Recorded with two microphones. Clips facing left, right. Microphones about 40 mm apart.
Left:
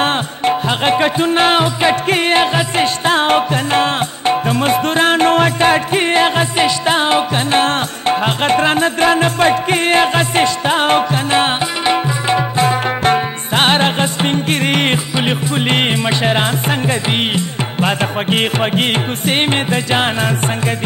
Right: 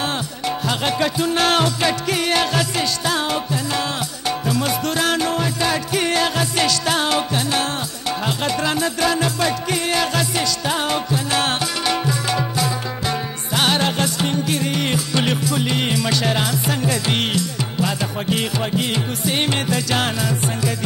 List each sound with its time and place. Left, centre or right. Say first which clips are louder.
0.0 s music: left 8 dB; left
7.6 s music: left 8 dB; left
11.4 s music: left 5 dB; left
15.5 s music: left 5 dB; left